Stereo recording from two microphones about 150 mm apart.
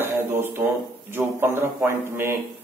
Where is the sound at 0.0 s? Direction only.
15° right (ahead or behind).